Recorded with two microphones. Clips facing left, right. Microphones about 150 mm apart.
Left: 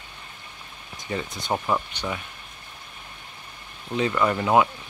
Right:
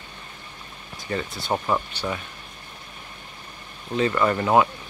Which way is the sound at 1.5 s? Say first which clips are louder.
Right 1 dB; centre (ahead or behind).